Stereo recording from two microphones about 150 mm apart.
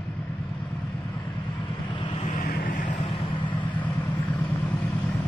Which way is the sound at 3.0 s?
35° left (ahead or behind).